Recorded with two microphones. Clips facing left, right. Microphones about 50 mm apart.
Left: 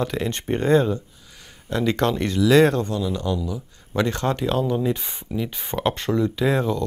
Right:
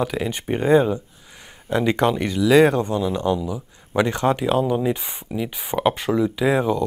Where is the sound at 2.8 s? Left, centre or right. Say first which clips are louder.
Right 3 dB; right.